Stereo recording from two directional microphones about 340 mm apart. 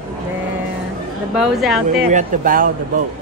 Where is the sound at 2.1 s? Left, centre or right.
Right.